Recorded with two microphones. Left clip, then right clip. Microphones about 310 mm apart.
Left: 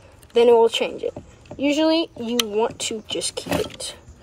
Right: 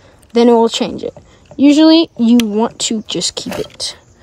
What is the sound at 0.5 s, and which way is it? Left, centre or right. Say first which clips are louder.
A woman's voice: right 4 dB; right.